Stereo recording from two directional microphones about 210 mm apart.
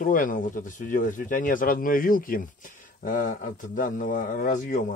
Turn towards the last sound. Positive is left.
turn(degrees=40)  # may be behind; listen again after turning